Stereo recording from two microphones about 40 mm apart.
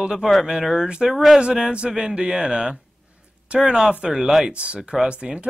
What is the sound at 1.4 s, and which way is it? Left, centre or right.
Speech, right.